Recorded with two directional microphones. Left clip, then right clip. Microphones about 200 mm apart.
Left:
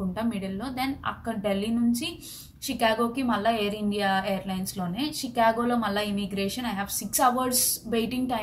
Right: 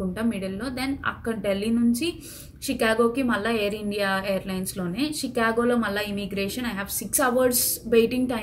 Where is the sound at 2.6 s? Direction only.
Centre (ahead or behind).